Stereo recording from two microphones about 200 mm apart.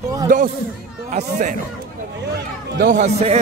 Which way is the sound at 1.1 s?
35° right (ahead or behind).